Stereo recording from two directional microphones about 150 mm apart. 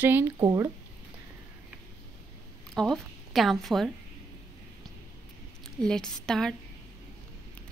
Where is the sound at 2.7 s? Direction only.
5° left (ahead or behind).